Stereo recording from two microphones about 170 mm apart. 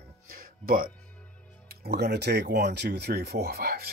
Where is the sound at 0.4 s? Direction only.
55° right (ahead or behind).